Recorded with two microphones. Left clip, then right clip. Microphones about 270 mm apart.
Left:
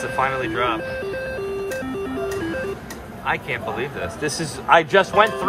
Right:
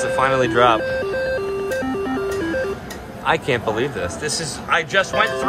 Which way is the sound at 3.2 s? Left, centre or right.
Centre.